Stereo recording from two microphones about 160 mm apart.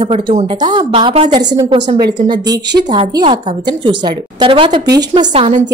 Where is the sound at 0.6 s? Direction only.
30° right (ahead or behind).